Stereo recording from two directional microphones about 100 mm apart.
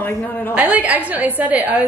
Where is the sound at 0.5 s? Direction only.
15° right (ahead or behind).